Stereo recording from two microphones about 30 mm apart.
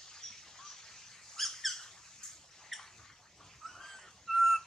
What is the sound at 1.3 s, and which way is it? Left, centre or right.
Squeak, centre.